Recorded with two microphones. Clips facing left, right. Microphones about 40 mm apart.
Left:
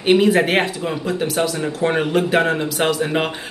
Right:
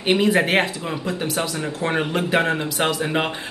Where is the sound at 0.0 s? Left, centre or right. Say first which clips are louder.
Left 4 dB; centre.